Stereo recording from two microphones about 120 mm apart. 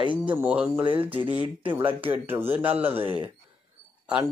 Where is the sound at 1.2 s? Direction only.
40° left (ahead or behind).